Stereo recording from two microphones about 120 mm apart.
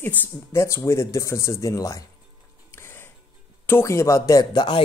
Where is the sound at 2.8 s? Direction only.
20° left (ahead or behind).